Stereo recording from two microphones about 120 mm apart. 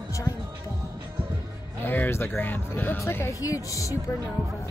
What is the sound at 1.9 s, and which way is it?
Speech, 20° left (ahead or behind).